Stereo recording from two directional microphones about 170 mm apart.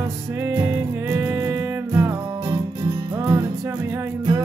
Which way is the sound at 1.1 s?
15° right (ahead or behind).